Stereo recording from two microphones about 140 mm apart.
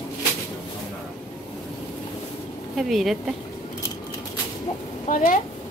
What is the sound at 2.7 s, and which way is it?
Speech, centre (ahead or behind).